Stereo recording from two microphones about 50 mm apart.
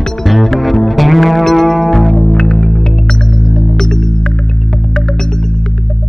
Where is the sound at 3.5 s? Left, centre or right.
Centre.